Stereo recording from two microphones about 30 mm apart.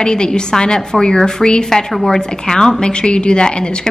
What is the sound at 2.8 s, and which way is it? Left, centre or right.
A woman's voice, left.